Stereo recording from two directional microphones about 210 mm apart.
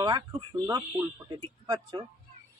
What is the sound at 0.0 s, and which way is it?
Speech, 20° right (ahead or behind).